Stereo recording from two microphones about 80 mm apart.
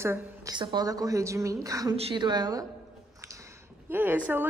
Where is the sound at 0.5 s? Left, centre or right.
Right.